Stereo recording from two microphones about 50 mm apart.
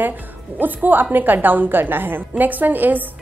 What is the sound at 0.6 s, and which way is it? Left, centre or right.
A woman's voice, right.